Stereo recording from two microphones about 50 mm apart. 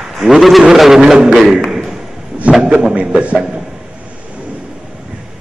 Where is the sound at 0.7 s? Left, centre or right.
Centre.